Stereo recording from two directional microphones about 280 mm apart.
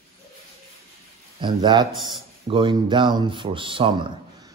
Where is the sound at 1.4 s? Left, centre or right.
Centre.